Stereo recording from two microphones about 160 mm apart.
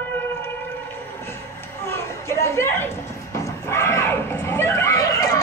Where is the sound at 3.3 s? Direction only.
15° left (ahead or behind).